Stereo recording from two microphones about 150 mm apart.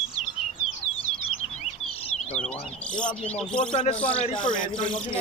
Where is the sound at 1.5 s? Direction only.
45° left (ahead or behind).